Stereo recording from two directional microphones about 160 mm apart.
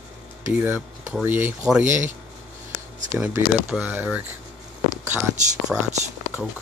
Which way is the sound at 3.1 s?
10° right (ahead or behind).